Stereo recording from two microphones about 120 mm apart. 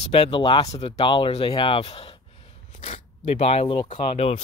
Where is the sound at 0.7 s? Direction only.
60° left (ahead or behind).